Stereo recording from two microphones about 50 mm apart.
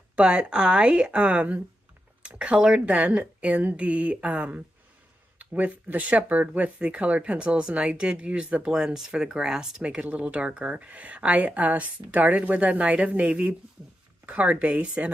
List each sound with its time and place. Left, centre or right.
0.1 s speech: right
8.7 s speech: centre
9.8 s speech: right